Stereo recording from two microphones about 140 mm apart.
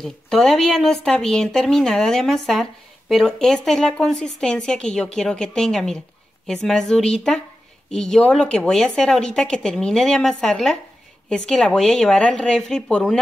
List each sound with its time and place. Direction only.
0.0 s speech: 5° left (ahead or behind)